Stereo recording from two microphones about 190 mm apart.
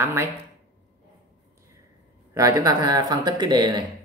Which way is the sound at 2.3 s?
15° right (ahead or behind).